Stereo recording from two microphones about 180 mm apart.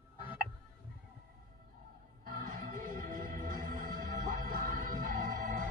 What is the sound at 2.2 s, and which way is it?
Music, 50° right (ahead or behind).